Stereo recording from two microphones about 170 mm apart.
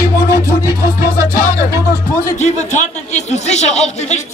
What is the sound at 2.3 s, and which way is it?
Speech, 45° left (ahead or behind).